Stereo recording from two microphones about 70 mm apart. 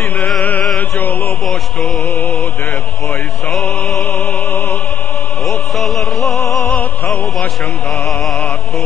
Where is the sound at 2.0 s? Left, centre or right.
Left.